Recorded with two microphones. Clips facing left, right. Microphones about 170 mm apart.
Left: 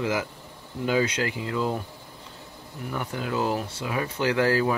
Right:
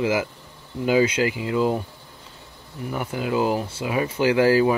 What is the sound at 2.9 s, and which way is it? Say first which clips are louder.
Speech: right 4 dB; 10° right (ahead or behind).